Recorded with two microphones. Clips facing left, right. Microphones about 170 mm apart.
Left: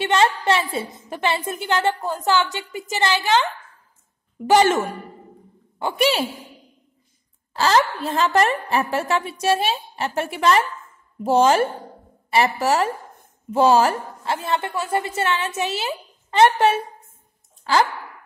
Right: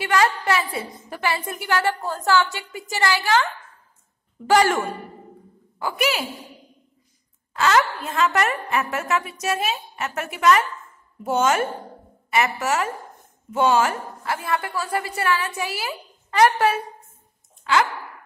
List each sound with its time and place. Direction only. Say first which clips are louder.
0.0 s a woman's voice: left 2 dB; 25° left (ahead or behind)
4.5 s a woman's voice: left 2 dB; 20° left (ahead or behind)
7.5 s a woman's voice: left 1 dB; 30° left (ahead or behind)
17.7 s a woman's voice: left 1 dB; 35° left (ahead or behind)